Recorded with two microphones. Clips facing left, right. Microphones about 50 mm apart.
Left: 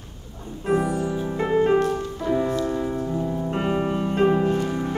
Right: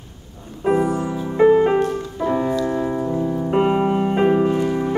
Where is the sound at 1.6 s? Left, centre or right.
Centre.